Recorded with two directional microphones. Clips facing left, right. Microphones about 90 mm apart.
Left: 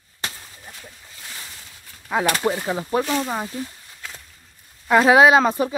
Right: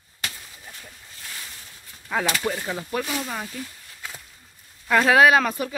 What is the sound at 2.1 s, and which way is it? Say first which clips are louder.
Speech: left 3 dB; 15° left (ahead or behind).